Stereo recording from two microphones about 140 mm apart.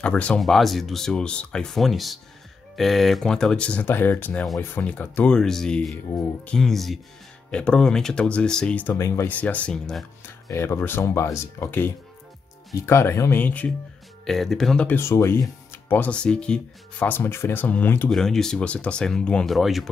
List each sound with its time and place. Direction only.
0.0 s speech: 10° left (ahead or behind)
8.9 s speech: 20° left (ahead or behind); by 10.0 s 5° left (ahead or behind)
10.5 s speech: 20° left (ahead or behind)
15.0 s speech: 20° left (ahead or behind)
15.9 s speech: 10° left (ahead or behind)
18.1 s speech: 5° left (ahead or behind)